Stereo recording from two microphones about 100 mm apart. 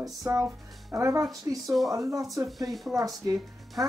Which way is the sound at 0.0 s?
30° right (ahead or behind).